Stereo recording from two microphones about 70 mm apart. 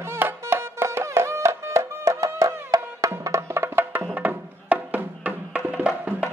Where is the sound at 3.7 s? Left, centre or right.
Right.